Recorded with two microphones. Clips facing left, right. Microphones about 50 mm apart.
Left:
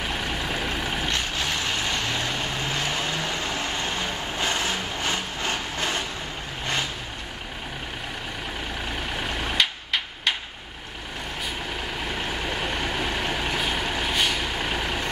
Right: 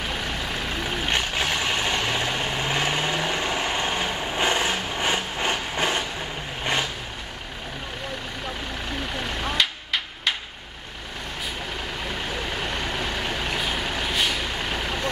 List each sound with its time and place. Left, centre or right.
0.0 s vehicle: centre
1.0 s vehicle: centre
9.0 s vehicle: centre
12.0 s vehicle: centre